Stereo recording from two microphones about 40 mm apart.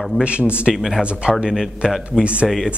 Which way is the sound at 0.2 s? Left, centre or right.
Right.